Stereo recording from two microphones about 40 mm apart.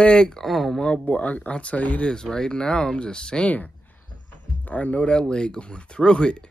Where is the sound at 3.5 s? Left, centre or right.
Left.